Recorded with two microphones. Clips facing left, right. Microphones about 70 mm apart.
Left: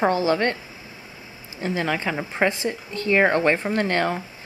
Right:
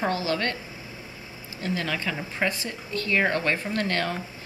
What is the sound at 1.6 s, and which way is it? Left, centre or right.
Speech, left.